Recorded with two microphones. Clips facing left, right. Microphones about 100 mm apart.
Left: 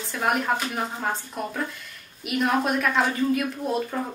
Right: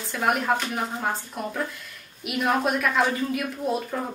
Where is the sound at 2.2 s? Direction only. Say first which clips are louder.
Even; centre (ahead or behind).